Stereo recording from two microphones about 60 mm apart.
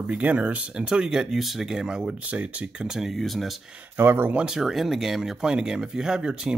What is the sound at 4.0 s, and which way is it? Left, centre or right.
Speech, right.